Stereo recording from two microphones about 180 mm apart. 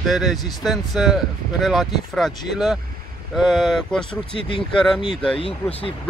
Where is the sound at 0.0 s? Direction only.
Centre (ahead or behind).